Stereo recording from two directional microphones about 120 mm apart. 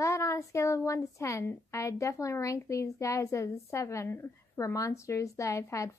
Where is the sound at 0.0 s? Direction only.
25° left (ahead or behind).